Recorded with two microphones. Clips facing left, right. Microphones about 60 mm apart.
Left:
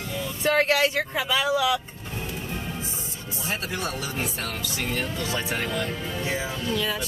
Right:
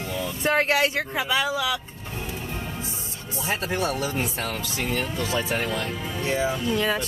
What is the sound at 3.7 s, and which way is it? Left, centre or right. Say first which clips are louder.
Speech: right 4 dB; right.